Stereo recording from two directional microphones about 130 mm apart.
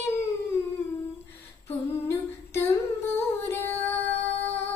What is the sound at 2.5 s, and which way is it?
Humming, 20° left (ahead or behind).